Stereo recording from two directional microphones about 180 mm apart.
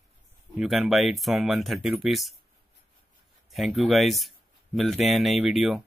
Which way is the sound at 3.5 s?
Centre (ahead or behind).